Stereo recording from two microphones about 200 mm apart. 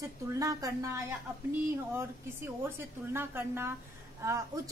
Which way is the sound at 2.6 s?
10° right (ahead or behind).